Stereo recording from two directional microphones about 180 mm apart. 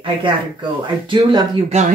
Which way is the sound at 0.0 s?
30° right (ahead or behind).